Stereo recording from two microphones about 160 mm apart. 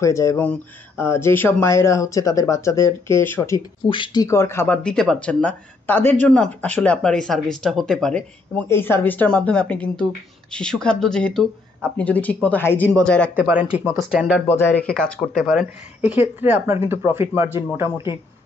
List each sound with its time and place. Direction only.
0.0 s speech: 20° left (ahead or behind)
4.8 s speech: 5° left (ahead or behind)
13.4 s speech: 10° right (ahead or behind)
14.5 s speech: 10° left (ahead or behind); by 17.6 s 15° right (ahead or behind)